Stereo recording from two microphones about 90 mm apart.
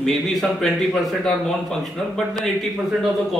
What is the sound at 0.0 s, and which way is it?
A man's voice, 5° left (ahead or behind).